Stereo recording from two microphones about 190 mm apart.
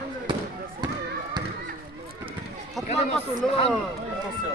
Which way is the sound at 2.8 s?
Centre (ahead or behind).